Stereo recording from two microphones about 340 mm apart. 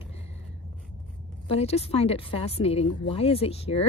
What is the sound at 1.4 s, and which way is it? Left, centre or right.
Speech, centre.